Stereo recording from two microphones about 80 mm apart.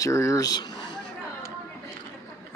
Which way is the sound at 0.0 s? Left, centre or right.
Left.